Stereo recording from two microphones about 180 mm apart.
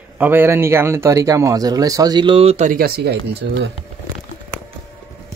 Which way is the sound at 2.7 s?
60° right (ahead or behind).